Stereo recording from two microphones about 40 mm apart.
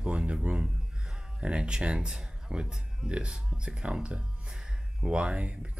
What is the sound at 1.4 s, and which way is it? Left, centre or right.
Speech, right.